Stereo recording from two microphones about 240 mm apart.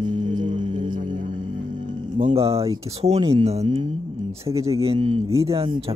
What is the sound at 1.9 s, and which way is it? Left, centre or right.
Speech, right.